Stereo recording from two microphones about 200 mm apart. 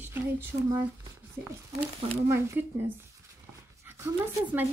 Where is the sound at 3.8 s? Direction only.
10° right (ahead or behind).